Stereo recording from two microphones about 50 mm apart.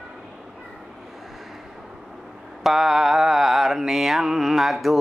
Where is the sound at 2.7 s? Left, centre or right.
Centre.